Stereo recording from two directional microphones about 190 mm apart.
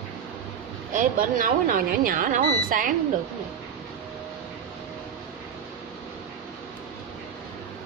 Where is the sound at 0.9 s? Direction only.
45° right (ahead or behind).